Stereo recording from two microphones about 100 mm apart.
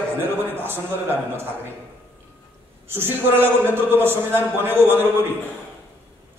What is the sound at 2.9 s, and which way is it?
A man's voice, 20° right (ahead or behind).